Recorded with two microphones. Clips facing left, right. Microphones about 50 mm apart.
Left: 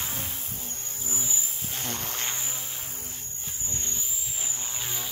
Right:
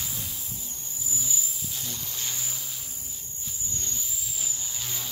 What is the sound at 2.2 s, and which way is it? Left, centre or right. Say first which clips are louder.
Vehicle: left 3 dB; left.